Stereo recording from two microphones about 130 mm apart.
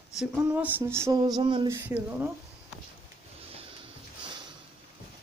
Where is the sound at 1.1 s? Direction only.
30° right (ahead or behind).